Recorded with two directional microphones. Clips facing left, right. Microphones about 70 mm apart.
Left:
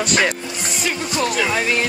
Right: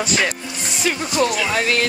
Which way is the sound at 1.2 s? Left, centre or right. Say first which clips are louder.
Even; centre.